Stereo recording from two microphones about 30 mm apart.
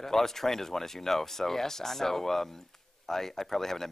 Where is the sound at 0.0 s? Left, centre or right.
Centre.